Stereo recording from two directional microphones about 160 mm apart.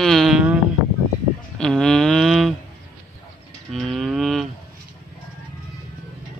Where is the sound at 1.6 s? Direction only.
5° left (ahead or behind).